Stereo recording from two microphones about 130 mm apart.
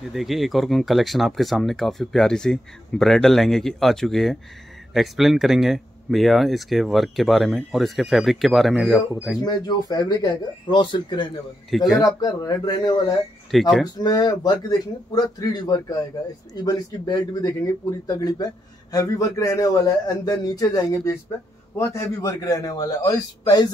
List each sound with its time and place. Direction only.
0.1 s speech: centre (ahead or behind)
9.4 s a man's voice: 35° left (ahead or behind)
11.7 s speech: centre (ahead or behind)
12.2 s speech: 30° left (ahead or behind)
13.5 s speech: centre (ahead or behind)
13.8 s a man's voice: 30° left (ahead or behind)